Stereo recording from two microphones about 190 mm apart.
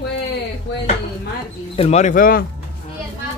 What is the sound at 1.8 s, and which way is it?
Speech, 35° left (ahead or behind).